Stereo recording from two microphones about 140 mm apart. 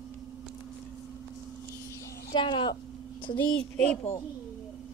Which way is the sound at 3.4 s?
5° left (ahead or behind).